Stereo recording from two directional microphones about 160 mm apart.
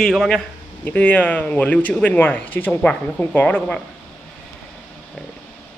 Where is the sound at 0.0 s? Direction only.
5° left (ahead or behind).